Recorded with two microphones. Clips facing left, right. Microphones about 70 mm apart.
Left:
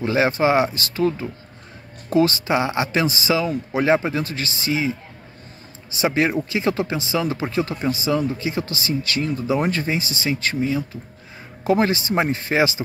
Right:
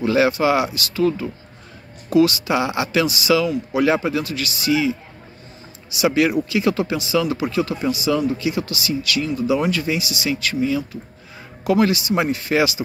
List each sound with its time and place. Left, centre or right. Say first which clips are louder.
0.0 s speech: right 2 dB; left